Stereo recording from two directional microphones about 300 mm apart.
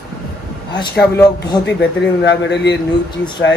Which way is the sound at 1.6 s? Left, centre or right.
Left.